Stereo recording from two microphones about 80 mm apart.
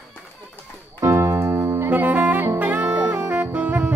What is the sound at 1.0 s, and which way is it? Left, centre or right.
Keyboard, right.